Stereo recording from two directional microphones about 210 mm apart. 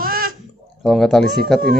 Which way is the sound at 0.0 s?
45° right (ahead or behind).